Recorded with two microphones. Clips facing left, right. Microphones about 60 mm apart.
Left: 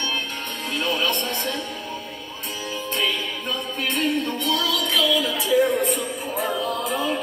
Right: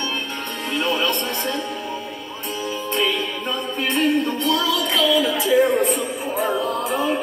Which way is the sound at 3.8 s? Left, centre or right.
Right.